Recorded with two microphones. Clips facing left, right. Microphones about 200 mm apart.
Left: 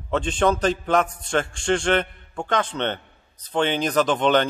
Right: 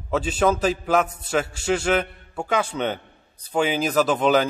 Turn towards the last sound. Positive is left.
turn(degrees=-5)  # may be behind; listen again after turning